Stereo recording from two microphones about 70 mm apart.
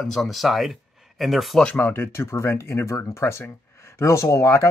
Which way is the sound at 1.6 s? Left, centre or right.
Left.